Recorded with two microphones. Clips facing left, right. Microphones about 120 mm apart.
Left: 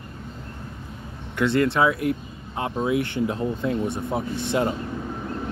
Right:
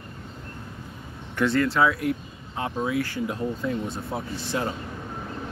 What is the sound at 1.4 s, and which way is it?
Speech, 25° left (ahead or behind).